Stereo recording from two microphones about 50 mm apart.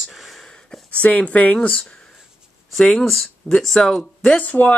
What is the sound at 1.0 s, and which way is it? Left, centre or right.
Speech, left.